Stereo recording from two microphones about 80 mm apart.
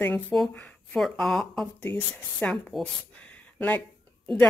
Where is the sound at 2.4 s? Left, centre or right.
Centre.